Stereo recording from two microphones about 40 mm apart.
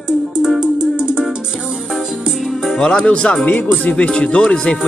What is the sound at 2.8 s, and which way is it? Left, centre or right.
Speech, centre.